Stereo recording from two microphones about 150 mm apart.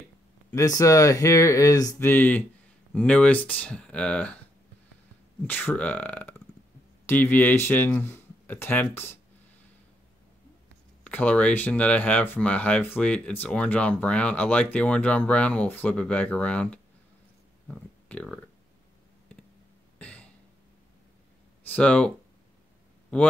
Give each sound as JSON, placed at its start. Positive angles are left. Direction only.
{"t": 0.6, "sound": "speech", "side_deg": 20}
{"t": 5.5, "sound": "speech", "side_deg": 10}
{"t": 11.1, "sound": "speech", "side_deg": 10}
{"t": 20.0, "sound": "a sound", "side_deg": 10}
{"t": 21.6, "sound": "speech", "side_deg": 10}